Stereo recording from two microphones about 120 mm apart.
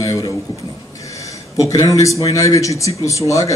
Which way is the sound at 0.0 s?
30° left (ahead or behind).